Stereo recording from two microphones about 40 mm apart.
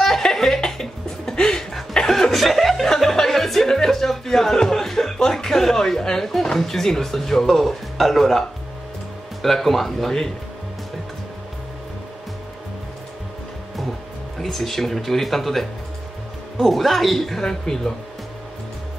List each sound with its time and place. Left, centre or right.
0.0 s music: centre
1.6 s chuckle: centre
9.4 s speech: centre
14.4 s speech: centre
16.6 s speech: centre
17.4 s speech: centre